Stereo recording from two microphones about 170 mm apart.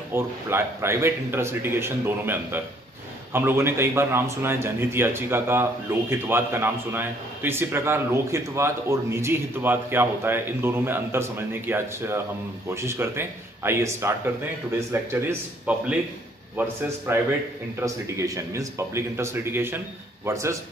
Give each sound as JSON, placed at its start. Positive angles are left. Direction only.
{"t": 0.1, "sound": "a man's voice", "side_deg": -15}